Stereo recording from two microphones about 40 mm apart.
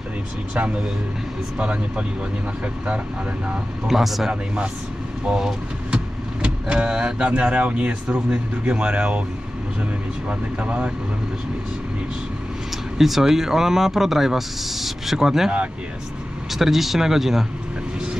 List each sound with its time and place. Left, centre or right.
1.6 s speech: right
3.8 s speech: centre
5.3 s speech: centre
12.9 s speech: centre
16.5 s speech: centre